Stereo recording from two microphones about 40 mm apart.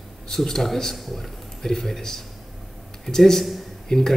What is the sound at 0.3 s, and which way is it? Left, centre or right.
A man's voice, centre.